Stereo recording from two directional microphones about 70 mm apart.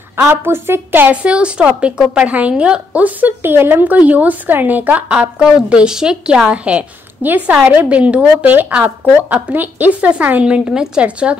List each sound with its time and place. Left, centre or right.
0.3 s a woman's voice: right
1.1 s a woman's voice: centre